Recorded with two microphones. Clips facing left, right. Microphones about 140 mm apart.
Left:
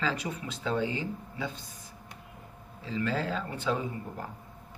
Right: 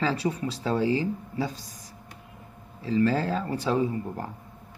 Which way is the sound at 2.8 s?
35° right (ahead or behind).